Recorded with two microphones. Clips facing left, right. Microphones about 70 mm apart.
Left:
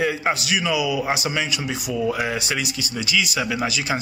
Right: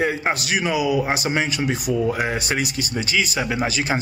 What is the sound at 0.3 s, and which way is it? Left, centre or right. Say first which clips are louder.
A man's voice: even; right.